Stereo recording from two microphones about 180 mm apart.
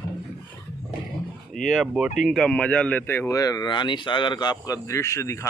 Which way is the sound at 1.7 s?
Centre (ahead or behind).